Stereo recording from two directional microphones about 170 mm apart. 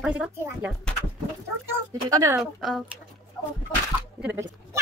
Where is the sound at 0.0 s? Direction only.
5° right (ahead or behind).